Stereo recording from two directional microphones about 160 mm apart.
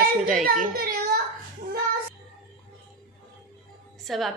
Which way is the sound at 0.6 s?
65° right (ahead or behind).